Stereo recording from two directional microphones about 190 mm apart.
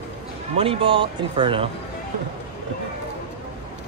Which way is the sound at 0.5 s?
30° right (ahead or behind).